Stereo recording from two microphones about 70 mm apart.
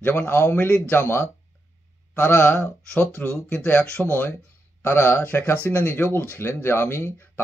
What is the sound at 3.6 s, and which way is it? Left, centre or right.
Speech, left.